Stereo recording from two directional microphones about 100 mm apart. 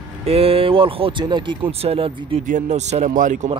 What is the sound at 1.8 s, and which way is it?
Speech, 80° right.